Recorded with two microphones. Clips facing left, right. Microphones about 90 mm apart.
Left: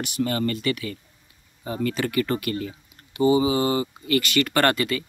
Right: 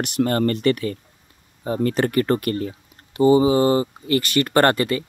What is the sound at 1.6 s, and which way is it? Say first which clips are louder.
Speech: right 5 dB; 35° right (ahead or behind).